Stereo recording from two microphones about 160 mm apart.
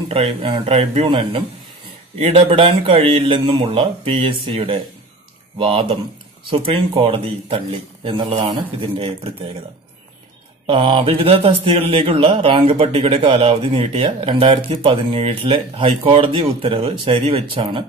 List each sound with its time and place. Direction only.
0.1 s speech: 35° right (ahead or behind)
10.7 s speech: 35° right (ahead or behind)